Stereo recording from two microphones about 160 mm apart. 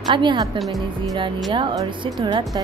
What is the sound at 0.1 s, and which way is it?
Speech, 30° right (ahead or behind).